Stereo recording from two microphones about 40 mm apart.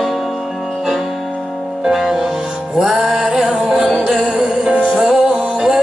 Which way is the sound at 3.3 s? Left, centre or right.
Centre.